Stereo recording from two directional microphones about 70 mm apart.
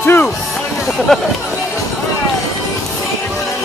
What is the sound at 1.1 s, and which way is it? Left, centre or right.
Speech, centre.